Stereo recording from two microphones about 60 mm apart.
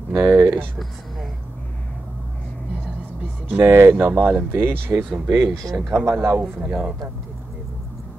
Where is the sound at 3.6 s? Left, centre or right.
Right.